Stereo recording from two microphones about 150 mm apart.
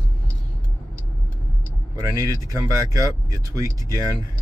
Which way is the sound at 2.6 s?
25° right (ahead or behind).